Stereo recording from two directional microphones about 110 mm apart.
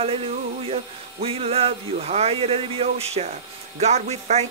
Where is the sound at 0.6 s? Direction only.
60° right (ahead or behind).